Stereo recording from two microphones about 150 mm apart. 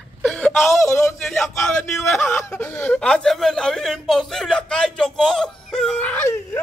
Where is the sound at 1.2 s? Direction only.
Centre (ahead or behind).